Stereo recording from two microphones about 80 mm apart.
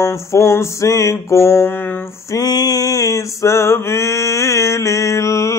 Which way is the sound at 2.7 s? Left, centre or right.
Left.